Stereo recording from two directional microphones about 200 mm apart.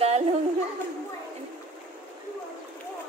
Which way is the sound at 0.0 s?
30° right (ahead or behind).